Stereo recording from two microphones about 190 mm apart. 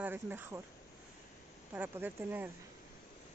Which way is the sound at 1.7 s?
10° right (ahead or behind).